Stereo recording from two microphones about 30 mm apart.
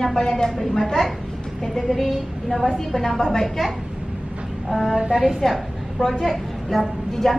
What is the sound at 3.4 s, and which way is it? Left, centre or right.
Speech, centre.